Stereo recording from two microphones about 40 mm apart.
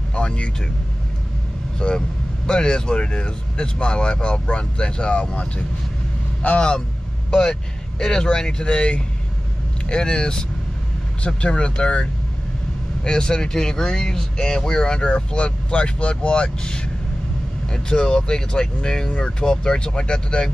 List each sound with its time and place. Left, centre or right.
0.1 s vehicle: left
1.8 s speech: left
7.2 s speech: centre